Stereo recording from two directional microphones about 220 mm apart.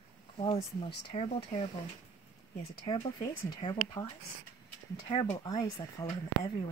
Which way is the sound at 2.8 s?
20° left (ahead or behind).